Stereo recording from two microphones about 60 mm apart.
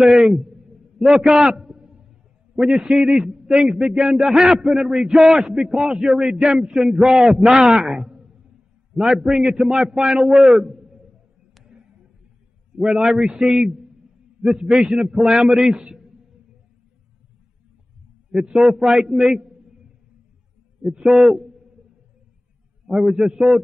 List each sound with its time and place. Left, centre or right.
0.0 s a man's voice: centre
12.7 s a man's voice: centre
18.3 s a man's voice: centre
21.0 s a man's voice: centre
22.8 s a man's voice: centre